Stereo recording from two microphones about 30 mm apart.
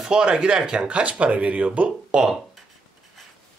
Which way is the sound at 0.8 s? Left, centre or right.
Right.